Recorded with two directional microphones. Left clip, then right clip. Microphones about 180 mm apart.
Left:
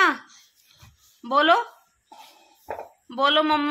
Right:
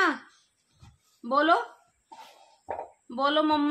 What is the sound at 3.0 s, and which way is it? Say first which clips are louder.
Speech: left 5 dB; 15° left (ahead or behind).